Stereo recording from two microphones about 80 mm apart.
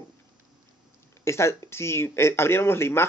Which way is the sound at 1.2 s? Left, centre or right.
Left.